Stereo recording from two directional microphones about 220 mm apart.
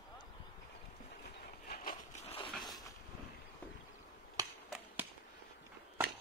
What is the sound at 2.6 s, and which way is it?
Vehicle, 15° left (ahead or behind).